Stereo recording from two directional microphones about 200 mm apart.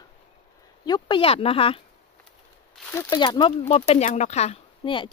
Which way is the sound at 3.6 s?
35° left (ahead or behind).